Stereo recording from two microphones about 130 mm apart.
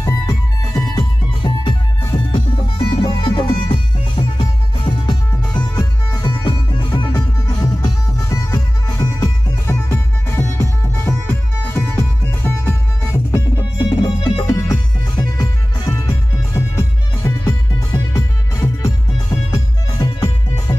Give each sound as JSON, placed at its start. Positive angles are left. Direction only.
{"t": 0.0, "sound": "music", "side_deg": 25}
{"t": 13.7, "sound": "music", "side_deg": 35}
{"t": 20.0, "sound": "music", "side_deg": 30}